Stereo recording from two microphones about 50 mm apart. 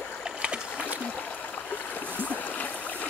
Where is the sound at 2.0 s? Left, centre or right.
Left.